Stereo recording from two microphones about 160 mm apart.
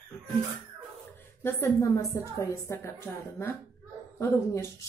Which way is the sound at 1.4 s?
15° left (ahead or behind).